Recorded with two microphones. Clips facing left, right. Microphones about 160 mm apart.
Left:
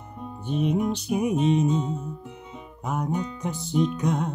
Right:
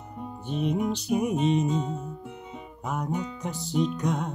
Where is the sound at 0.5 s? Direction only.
5° left (ahead or behind).